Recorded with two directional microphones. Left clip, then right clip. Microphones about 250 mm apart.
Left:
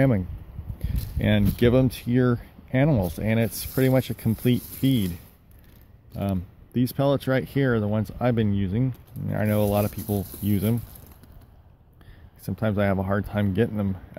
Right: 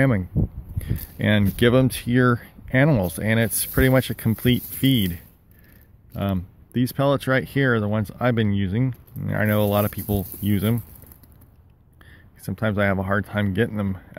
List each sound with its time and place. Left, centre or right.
0.7 s speech: centre
12.4 s speech: centre